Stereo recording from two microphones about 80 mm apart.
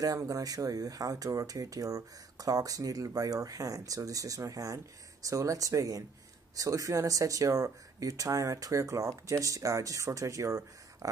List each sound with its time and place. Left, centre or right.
0.2 s speech: right